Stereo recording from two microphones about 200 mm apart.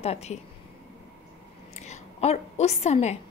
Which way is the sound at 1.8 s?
35° left (ahead or behind).